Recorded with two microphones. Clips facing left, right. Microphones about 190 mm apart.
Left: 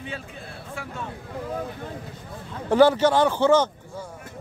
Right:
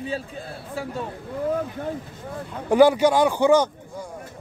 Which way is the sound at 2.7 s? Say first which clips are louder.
Right 1 dB; 10° right (ahead or behind).